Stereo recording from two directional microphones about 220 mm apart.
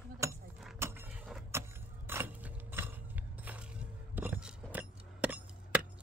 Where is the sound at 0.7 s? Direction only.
10° right (ahead or behind).